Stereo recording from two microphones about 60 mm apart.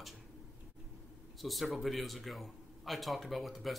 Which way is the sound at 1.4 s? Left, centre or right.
Centre.